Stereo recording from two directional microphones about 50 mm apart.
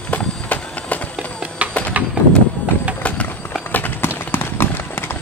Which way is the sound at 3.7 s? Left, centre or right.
Left.